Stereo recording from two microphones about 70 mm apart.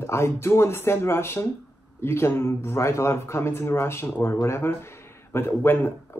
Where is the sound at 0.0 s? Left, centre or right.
Left.